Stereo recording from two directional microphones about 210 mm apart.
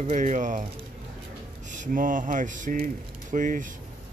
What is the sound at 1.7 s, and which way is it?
Speech, 40° right (ahead or behind).